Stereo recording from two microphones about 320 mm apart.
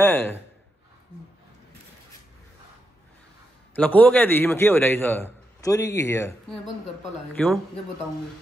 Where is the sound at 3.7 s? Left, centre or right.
Centre.